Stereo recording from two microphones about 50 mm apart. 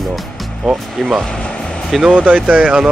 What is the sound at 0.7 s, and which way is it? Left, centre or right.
Speech, centre.